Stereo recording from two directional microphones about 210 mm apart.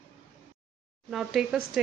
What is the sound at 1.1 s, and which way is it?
Speech, centre (ahead or behind).